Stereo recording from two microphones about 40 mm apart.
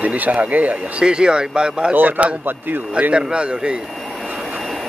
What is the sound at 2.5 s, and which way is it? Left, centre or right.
Speech, right.